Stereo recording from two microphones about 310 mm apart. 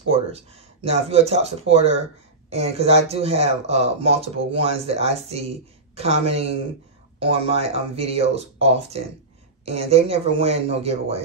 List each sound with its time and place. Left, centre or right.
0.1 s speech: centre